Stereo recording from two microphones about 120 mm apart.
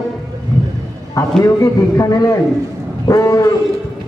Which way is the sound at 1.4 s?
25° left (ahead or behind).